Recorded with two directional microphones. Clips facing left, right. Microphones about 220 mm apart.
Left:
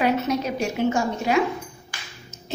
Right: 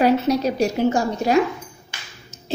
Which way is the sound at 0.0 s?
35° right (ahead or behind).